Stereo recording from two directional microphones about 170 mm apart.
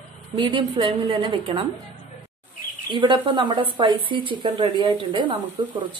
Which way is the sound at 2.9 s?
30° right (ahead or behind).